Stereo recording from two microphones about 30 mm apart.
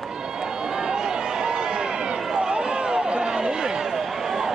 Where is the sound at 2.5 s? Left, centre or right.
Right.